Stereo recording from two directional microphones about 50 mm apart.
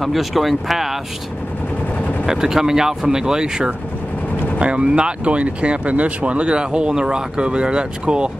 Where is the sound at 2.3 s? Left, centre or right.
Centre.